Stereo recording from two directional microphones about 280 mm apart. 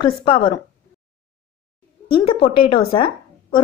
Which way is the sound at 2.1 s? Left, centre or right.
Centre.